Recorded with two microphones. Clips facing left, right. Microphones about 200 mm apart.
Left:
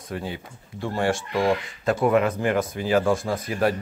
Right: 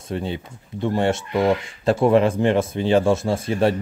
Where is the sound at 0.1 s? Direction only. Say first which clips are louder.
Right 5 dB; 25° right (ahead or behind).